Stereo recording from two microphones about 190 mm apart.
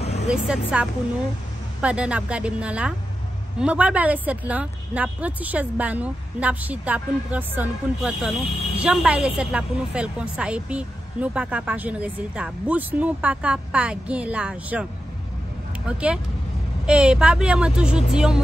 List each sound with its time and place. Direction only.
0.3 s a woman's voice: 5° right (ahead or behind)
15.9 s a woman's voice: 5° right (ahead or behind)